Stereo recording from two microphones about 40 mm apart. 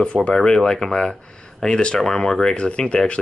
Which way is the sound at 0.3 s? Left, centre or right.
Centre.